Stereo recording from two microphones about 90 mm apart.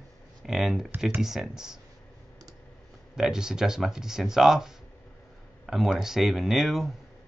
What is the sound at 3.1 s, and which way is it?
Speech, 5° right (ahead or behind).